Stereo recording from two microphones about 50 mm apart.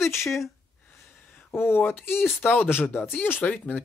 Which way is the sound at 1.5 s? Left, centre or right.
Left.